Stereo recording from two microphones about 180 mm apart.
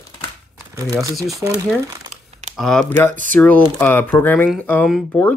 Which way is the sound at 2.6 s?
Centre (ahead or behind).